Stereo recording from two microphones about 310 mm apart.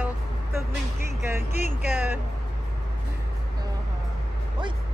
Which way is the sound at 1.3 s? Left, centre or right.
Centre.